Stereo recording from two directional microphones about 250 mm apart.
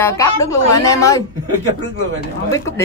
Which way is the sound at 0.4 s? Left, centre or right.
Centre.